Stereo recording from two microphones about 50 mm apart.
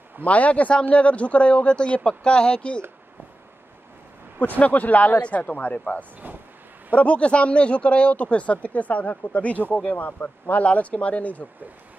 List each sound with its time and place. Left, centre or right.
0.2 s speech: left
4.4 s speech: left
6.2 s speech: right
7.0 s speech: left